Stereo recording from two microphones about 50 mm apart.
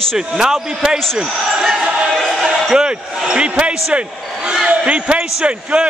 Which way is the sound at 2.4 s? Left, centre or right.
Centre.